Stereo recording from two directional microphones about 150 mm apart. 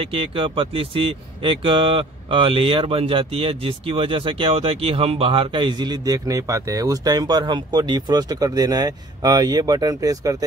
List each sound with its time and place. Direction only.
0.0 s speech: 35° right (ahead or behind)